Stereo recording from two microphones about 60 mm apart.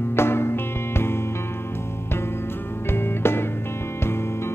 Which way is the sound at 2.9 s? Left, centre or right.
Left.